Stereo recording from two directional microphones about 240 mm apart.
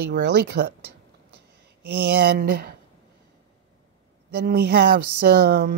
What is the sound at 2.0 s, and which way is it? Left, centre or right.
Speech, right.